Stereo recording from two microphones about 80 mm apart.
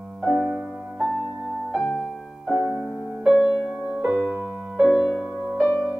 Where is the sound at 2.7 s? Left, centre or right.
Centre.